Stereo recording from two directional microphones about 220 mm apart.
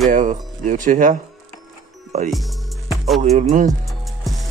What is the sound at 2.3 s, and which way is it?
Music, centre (ahead or behind).